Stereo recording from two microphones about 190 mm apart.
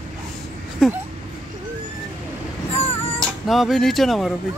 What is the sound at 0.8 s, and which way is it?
Speech, centre (ahead or behind).